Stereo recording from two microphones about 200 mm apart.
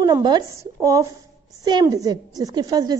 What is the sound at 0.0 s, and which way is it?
A woman's voice, 20° right (ahead or behind).